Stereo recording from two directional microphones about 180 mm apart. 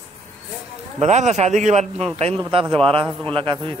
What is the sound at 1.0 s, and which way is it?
A man's voice, 40° right (ahead or behind).